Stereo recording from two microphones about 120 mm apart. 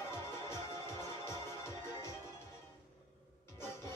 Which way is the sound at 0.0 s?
25° left (ahead or behind).